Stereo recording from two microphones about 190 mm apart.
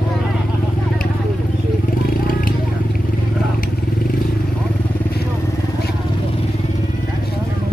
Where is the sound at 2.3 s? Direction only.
50° left (ahead or behind).